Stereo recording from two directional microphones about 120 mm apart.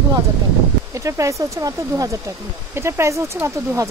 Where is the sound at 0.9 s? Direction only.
25° right (ahead or behind).